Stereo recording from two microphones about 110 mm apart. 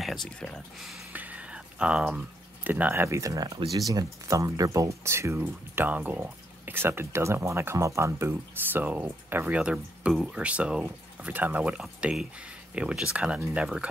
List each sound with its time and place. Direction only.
0.0 s speech: centre (ahead or behind)
1.1 s a sound: 15° right (ahead or behind); by 3.5 s 30° right (ahead or behind)
3.7 s speech: 35° right (ahead or behind); by 13.8 s 10° right (ahead or behind)